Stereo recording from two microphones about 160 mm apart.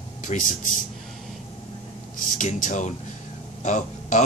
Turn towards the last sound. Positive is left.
turn(degrees=50)  # may be behind; listen again after turning